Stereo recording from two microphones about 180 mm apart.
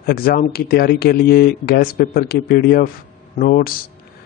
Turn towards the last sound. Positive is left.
turn(degrees=50)  # may be behind; listen again after turning